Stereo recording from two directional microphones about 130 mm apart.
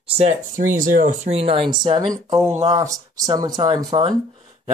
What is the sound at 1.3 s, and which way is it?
Speech, 50° right (ahead or behind).